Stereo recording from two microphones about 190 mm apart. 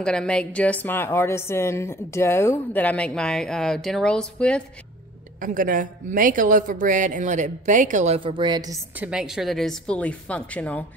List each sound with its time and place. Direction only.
0.0 s a woman's voice: 5° left (ahead or behind)
5.4 s a woman's voice: 45° right (ahead or behind); by 8.7 s 20° right (ahead or behind)
9.0 s a woman's voice: 5° right (ahead or behind)